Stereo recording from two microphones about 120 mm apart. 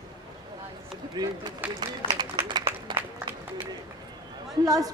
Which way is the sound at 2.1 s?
35° right (ahead or behind).